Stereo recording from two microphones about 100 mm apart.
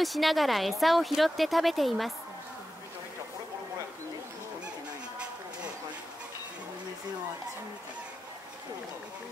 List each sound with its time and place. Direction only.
0.0 s speech: centre (ahead or behind)